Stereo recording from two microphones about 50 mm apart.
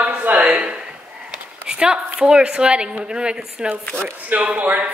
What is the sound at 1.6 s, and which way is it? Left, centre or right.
A woman's voice, centre.